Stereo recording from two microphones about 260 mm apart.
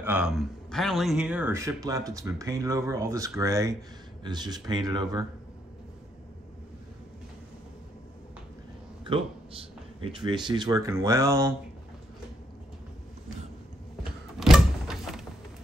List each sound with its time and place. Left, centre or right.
0.0 s speech: centre
9.0 s speech: right
14.4 s a sound: centre